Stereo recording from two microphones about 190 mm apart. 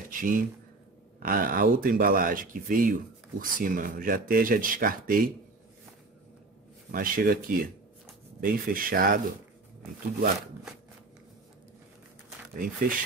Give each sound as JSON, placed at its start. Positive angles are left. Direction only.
{"t": 0.1, "sound": "speech", "side_deg": -45}
{"t": 6.9, "sound": "speech", "side_deg": -45}
{"t": 12.5, "sound": "speech", "side_deg": -45}